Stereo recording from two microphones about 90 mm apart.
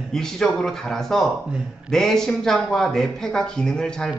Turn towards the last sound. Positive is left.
turn(degrees=5)  # may be behind; listen again after turning